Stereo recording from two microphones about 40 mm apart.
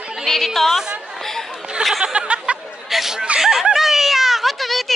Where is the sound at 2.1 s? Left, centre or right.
Right.